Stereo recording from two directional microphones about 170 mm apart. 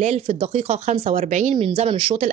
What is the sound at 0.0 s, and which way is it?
Speech, 40° right (ahead or behind).